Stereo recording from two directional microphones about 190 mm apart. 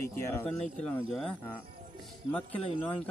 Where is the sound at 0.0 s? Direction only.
10° left (ahead or behind).